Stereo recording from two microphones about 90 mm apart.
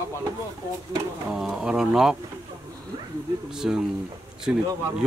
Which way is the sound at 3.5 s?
5° right (ahead or behind).